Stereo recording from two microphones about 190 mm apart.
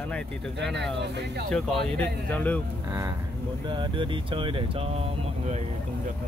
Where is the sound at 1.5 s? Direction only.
5° left (ahead or behind).